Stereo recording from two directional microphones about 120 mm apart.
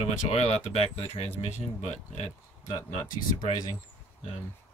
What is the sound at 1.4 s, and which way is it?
Speech, 70° left (ahead or behind).